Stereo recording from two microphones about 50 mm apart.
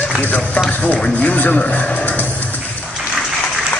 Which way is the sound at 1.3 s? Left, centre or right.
Left.